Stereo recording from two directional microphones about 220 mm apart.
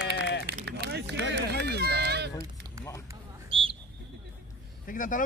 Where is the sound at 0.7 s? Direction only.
50° right (ahead or behind).